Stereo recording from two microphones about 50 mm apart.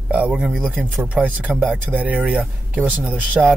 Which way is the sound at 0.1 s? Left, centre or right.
Right.